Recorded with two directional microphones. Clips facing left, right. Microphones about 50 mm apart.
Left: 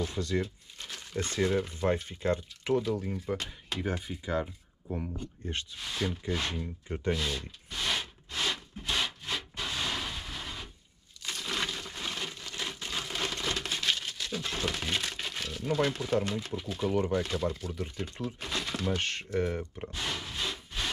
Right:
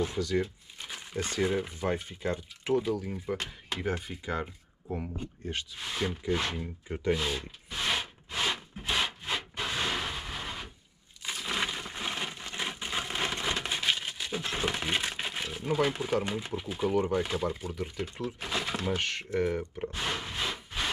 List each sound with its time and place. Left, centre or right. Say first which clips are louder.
0.4 s speech: right 2 dB; centre
3.3 s speech: even; centre
5.8 s zipper: right 1 dB; centre
11.2 s a sound: right 2 dB; centre
18.2 s speech: right 2 dB; centre
19.1 s wood: right 2 dB; centre